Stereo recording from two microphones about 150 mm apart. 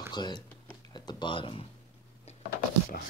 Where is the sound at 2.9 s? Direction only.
90° left.